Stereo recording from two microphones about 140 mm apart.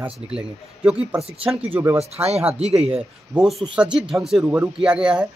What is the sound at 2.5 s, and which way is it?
Speech, 50° right (ahead or behind).